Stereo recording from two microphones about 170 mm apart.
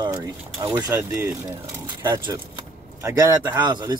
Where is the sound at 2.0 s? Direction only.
25° right (ahead or behind).